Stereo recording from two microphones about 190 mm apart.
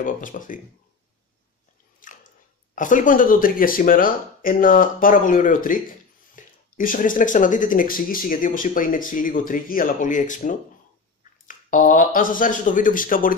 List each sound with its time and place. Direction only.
0.0 s speech: 45° left (ahead or behind)
2.0 s speech: 45° left (ahead or behind)